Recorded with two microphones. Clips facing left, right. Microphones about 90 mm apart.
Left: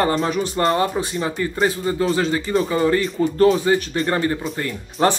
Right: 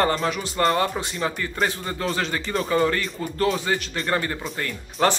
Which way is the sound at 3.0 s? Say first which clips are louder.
Left 8 dB; 35° left (ahead or behind).